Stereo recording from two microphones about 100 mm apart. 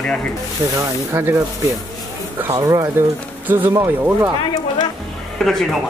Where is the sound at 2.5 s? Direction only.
35° right (ahead or behind).